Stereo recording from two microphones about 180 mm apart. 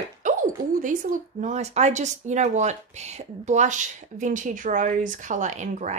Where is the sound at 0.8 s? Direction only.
45° right (ahead or behind).